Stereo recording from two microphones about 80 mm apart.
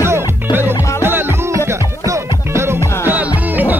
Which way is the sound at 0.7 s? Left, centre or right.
Left.